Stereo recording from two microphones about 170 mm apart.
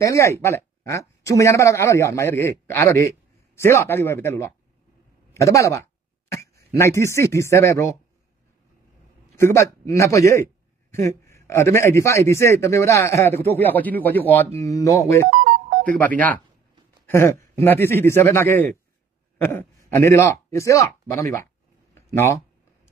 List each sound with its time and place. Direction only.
0.0 s a man's voice: 15° left (ahead or behind)
9.4 s a man's voice: 15° left (ahead or behind)
15.2 s ringtone: 55° right (ahead or behind)
15.8 s a man's voice: 10° left (ahead or behind)
17.0 s a sound: 15° left (ahead or behind)
17.6 s a man's voice: 15° left (ahead or behind)
21.9 s a sound: 15° left (ahead or behind)